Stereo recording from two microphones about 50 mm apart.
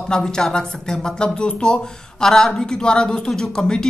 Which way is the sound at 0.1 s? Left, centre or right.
Centre.